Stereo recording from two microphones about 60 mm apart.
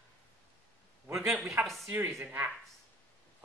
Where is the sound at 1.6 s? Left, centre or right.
Right.